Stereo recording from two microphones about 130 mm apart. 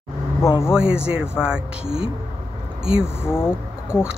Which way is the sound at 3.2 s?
20° left (ahead or behind).